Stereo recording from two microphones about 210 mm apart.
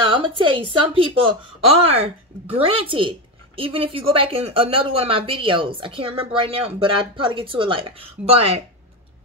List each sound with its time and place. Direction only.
0.1 s a woman's voice: 25° right (ahead or behind)